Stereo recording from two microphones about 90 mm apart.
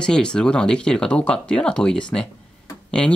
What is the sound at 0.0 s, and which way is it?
Speech, 10° left (ahead or behind).